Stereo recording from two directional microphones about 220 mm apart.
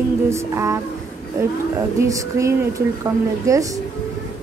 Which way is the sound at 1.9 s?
15° right (ahead or behind).